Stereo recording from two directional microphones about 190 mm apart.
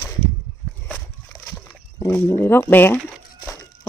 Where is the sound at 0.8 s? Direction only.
5° left (ahead or behind).